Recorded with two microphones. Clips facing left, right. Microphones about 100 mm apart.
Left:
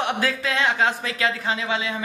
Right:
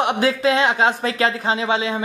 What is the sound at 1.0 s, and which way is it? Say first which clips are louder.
Speech: right 5 dB; 35° right (ahead or behind).